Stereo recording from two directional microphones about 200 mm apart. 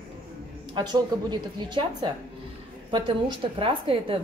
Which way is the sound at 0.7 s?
20° right (ahead or behind).